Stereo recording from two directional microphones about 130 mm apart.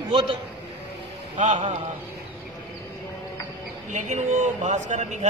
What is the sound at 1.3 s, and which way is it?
Speech, 65° right (ahead or behind).